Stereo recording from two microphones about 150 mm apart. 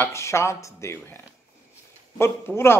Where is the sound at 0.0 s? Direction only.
20° left (ahead or behind).